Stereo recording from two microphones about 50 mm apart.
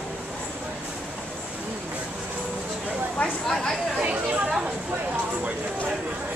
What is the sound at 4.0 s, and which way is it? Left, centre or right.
Chatter, right.